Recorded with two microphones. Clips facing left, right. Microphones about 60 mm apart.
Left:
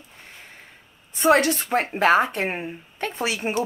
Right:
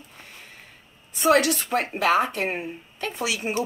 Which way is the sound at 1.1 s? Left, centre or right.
Left.